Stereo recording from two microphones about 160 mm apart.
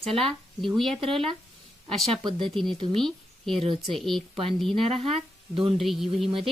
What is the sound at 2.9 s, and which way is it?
Speech, centre (ahead or behind).